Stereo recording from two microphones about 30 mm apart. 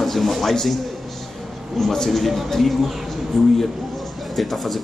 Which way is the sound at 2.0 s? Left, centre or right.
Centre.